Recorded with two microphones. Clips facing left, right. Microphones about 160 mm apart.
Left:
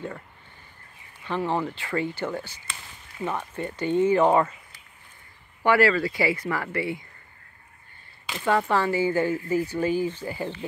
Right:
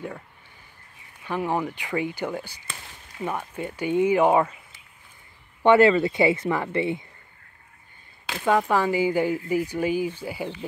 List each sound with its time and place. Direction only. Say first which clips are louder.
1.2 s speech: even; 10° right (ahead or behind)
5.6 s speech: right 4 dB; 20° right (ahead or behind)
8.5 s speech: right 2 dB; 10° right (ahead or behind)